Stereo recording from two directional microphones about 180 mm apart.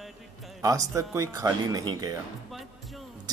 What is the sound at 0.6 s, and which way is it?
Speech, 20° right (ahead or behind).